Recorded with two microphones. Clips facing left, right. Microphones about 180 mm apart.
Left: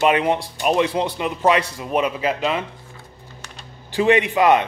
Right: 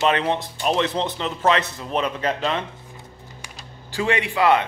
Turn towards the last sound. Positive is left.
turn(degrees=20)  # may be behind; listen again after turning